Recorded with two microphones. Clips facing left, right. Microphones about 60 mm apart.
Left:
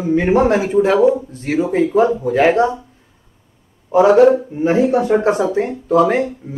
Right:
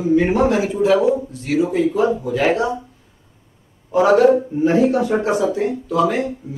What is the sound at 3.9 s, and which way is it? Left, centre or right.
Speech, left.